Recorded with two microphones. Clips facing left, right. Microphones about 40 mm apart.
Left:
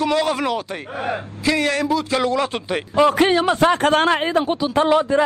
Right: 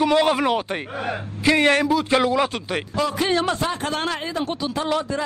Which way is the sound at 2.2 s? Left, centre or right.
Centre.